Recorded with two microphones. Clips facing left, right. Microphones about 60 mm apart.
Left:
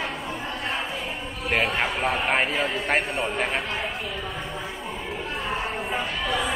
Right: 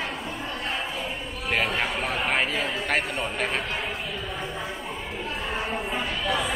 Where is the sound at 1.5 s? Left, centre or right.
Left.